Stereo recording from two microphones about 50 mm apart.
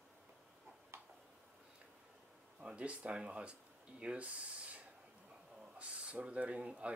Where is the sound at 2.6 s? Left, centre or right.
Right.